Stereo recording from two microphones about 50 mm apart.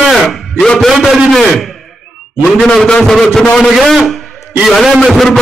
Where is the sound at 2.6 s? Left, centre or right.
Centre.